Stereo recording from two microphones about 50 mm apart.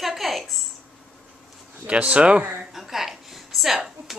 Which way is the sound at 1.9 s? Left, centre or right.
Right.